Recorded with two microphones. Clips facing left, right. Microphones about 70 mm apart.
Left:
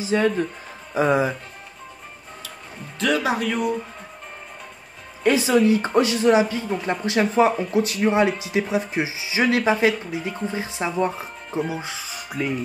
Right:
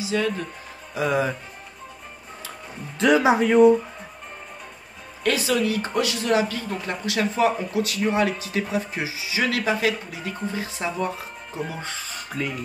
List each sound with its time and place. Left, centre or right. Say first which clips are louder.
0.0 s a woman's voice: left 4 dB; left
3.0 s speech: right 4 dB; centre
5.2 s a woman's voice: left 5 dB; left
11.7 s speech: left 2 dB; centre